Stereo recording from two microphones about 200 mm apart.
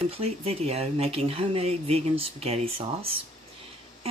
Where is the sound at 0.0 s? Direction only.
30° right (ahead or behind).